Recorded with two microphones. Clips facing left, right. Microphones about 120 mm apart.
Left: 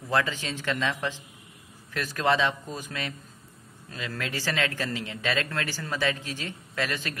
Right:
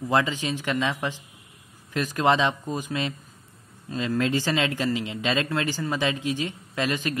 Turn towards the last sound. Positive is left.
turn(degrees=-15)  # may be behind; listen again after turning